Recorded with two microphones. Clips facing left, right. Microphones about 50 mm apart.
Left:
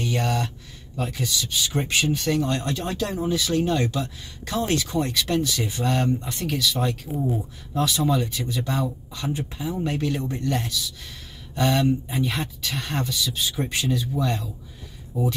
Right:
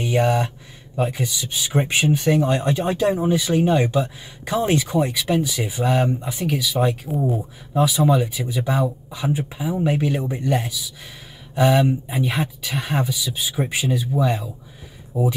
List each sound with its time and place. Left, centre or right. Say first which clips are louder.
0.0 s speech: right 6 dB; centre